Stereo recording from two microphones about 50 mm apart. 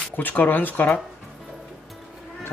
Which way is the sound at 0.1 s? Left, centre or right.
Left.